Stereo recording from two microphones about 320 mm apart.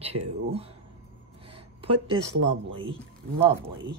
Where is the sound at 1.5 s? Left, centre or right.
Centre.